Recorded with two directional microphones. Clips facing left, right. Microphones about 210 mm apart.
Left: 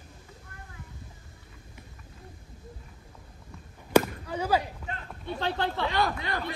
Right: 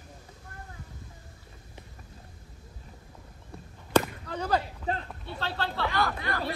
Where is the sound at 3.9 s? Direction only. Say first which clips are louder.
Left 3 dB; 10° left (ahead or behind).